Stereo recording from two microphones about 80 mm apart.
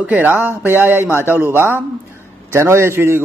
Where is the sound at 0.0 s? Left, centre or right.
Centre.